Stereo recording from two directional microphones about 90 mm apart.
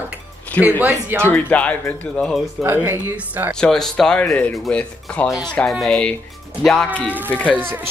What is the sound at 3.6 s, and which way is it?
Speech, 5° left (ahead or behind).